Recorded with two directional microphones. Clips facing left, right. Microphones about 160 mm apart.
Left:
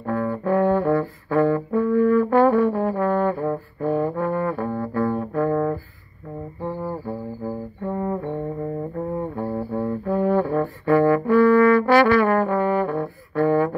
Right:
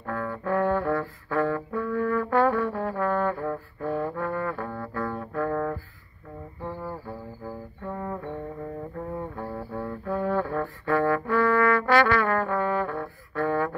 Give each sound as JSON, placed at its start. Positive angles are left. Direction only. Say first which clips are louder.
{"t": 0.0, "sound": "brass instrument", "louder": "left 7 dB", "side_deg": 20}
{"t": 6.6, "sound": "music", "louder": "left 6 dB", "side_deg": 25}